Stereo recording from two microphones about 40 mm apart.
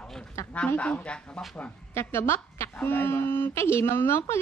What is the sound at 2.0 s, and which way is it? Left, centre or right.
Speech, left.